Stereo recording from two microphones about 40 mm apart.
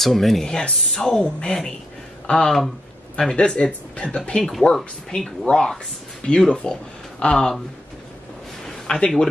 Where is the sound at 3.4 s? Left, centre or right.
Left.